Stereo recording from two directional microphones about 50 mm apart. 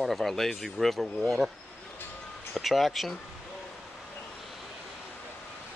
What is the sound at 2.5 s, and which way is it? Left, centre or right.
Speech, centre.